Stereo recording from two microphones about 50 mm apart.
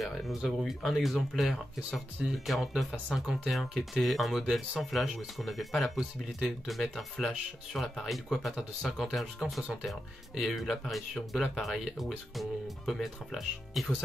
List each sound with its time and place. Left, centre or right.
0.0 s speech: centre
5.4 s speech: centre